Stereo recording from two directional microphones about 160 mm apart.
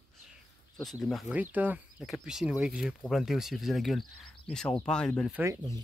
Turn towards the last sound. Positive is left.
turn(degrees=-15)  # may be behind; listen again after turning